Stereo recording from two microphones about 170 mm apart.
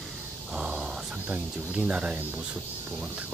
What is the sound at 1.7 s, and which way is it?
Speech, 5° right (ahead or behind).